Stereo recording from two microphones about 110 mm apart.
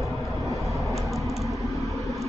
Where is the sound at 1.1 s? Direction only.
Centre (ahead or behind).